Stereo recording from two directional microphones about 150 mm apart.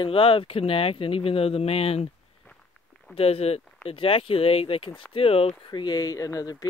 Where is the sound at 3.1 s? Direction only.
40° left (ahead or behind).